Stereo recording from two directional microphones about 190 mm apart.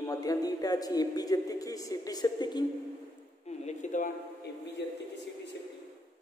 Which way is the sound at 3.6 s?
40° left (ahead or behind).